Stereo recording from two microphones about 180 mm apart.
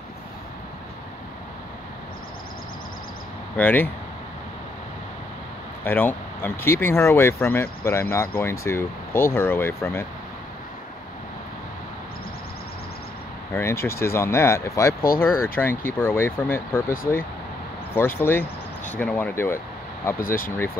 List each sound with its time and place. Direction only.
3.5 s speech: 10° left (ahead or behind)
5.9 s speech: 10° left (ahead or behind)
13.6 s speech: 15° left (ahead or behind)
17.9 s speech: 15° left (ahead or behind)
20.2 s speech: 50° left (ahead or behind)